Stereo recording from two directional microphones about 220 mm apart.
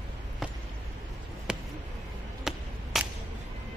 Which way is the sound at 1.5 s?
5° right (ahead or behind).